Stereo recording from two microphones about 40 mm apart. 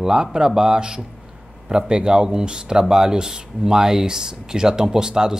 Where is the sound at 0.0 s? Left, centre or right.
Centre.